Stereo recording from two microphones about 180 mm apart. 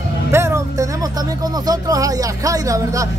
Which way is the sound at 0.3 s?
15° right (ahead or behind).